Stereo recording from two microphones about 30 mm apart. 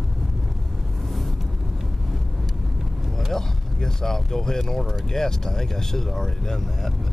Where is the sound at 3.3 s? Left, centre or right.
Centre.